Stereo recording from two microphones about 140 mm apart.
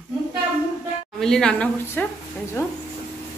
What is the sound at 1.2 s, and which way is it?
Speech, 5° left (ahead or behind).